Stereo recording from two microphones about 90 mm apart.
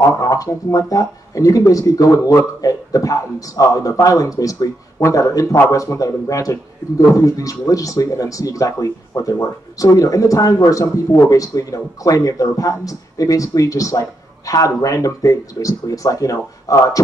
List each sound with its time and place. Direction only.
0.0 s a man's voice: 40° left (ahead or behind)